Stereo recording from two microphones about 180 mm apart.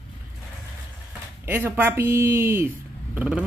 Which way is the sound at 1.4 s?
10° right (ahead or behind).